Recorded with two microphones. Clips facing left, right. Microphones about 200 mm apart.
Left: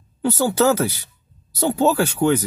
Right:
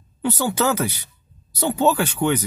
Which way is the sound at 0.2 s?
35° left (ahead or behind).